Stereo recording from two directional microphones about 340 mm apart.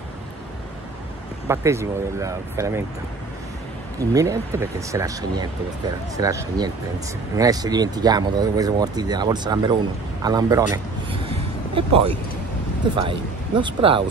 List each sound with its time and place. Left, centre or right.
1.5 s speech: centre
4.0 s speech: centre
11.1 s a sound: centre
12.9 s speech: centre